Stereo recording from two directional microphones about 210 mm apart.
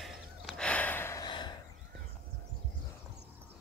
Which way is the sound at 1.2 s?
20° left (ahead or behind).